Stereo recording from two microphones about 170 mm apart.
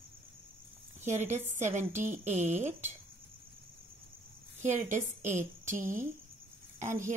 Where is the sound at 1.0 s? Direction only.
45° right (ahead or behind).